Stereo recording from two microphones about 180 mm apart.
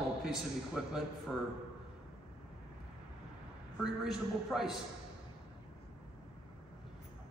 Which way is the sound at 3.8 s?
Centre (ahead or behind).